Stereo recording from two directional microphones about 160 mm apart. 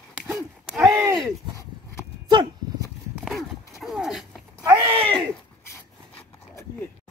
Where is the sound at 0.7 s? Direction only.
5° right (ahead or behind).